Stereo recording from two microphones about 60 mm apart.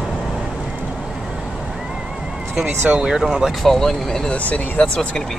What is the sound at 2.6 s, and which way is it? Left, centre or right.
Speech, centre.